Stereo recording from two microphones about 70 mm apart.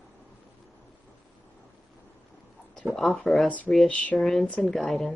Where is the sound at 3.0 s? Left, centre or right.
Centre.